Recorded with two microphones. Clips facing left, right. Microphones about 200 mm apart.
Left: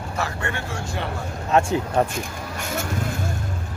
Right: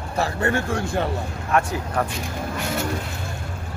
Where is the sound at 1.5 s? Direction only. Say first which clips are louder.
Left 3 dB; 25° left (ahead or behind).